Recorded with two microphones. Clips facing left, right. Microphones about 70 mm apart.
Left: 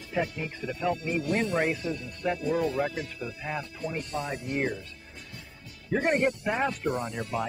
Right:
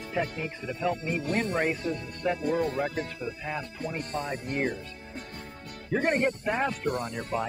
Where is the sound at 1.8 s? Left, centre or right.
Right.